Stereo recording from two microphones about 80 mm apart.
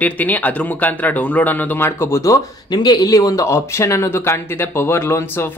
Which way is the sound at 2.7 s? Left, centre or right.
Left.